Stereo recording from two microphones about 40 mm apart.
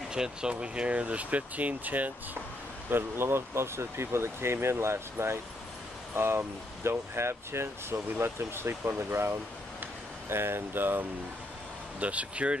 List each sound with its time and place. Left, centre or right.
0.1 s speech: right
2.9 s speech: right
12.0 s speech: right